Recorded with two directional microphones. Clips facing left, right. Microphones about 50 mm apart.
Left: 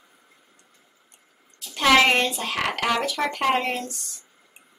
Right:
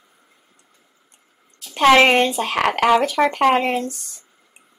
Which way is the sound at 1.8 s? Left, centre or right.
Right.